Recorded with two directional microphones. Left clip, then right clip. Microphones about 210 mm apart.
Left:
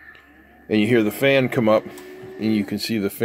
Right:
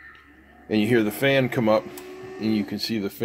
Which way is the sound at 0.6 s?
15° left (ahead or behind).